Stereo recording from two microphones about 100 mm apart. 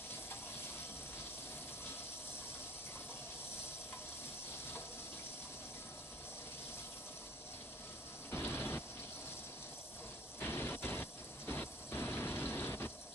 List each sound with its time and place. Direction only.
8.3 s mechanisms: 20° left (ahead or behind)
10.4 s vehicle: 20° left (ahead or behind)